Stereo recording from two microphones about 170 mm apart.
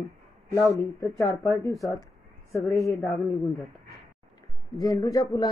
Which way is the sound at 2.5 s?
15° left (ahead or behind).